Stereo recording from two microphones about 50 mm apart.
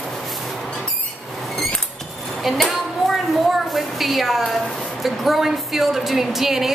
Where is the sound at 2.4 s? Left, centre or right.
Centre.